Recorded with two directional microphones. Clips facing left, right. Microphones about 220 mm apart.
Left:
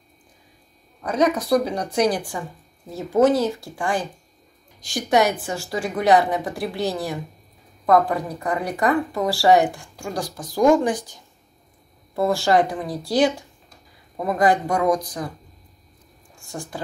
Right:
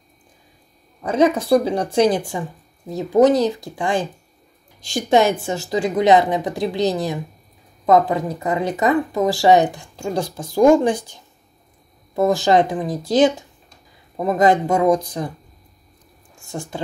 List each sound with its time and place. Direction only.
1.0 s speech: 30° right (ahead or behind)
16.3 s speech: 25° right (ahead or behind)